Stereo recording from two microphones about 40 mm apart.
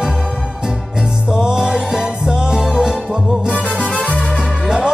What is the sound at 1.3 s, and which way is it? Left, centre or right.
Music, centre.